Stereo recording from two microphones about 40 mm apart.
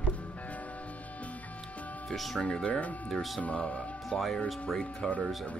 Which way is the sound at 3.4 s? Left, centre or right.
Left.